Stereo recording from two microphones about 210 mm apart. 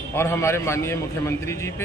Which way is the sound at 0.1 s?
10° left (ahead or behind).